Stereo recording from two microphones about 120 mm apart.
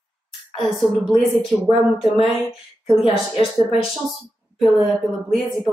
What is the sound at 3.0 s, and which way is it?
Speech, 50° left (ahead or behind).